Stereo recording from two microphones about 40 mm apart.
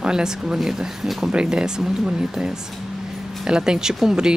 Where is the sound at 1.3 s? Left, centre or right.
Right.